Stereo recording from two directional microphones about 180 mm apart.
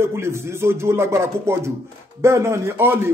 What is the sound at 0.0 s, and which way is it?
Speech, 15° right (ahead or behind).